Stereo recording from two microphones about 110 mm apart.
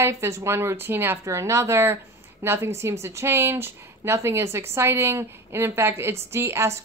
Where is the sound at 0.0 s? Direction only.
25° right (ahead or behind).